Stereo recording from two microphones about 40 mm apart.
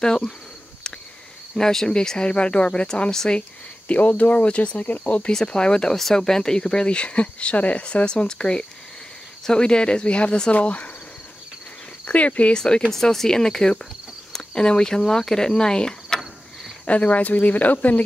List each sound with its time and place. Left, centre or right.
0.0 s speech: centre
1.5 s speech: centre
3.1 s speech: centre
3.3 s speech: left
5.5 s speech: left
12.0 s insect: left
12.5 s speech: centre
12.9 s speech: centre
16.8 s speech: left